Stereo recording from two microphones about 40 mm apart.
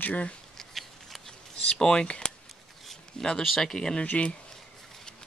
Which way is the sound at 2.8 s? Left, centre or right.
Centre.